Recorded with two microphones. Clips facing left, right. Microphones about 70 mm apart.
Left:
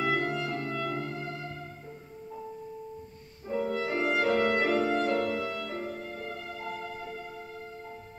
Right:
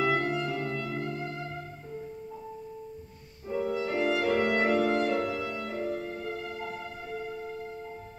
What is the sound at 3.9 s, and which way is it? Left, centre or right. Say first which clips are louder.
Music: right 2 dB; left.